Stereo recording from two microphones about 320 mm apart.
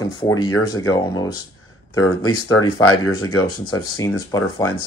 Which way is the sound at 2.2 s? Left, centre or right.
Left.